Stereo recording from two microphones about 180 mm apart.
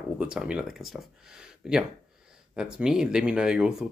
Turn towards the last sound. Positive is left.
turn(degrees=-5)  # may be behind; listen again after turning